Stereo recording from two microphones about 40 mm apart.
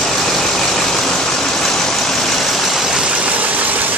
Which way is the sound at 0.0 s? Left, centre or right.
Centre.